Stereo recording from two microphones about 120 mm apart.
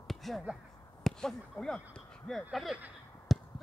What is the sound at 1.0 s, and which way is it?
Speech, 5° left (ahead or behind).